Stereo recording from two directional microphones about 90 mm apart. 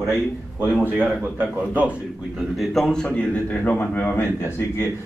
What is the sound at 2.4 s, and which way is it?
A man's voice, centre (ahead or behind).